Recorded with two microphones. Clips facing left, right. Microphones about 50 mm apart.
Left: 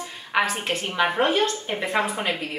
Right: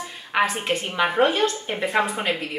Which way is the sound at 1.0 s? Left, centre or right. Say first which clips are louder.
Right 1 dB; centre.